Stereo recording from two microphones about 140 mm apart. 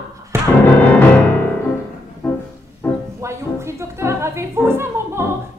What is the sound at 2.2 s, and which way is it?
Music, 15° left (ahead or behind).